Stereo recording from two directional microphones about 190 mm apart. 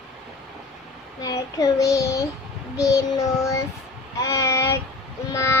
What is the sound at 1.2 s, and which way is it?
Child singing, 20° left (ahead or behind).